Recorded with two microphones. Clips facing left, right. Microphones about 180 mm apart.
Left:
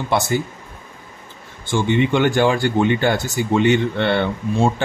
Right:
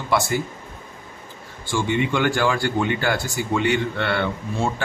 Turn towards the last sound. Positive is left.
turn(degrees=25)  # may be behind; listen again after turning